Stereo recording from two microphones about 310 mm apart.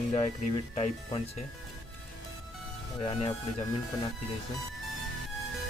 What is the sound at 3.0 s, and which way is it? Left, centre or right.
Speech, centre.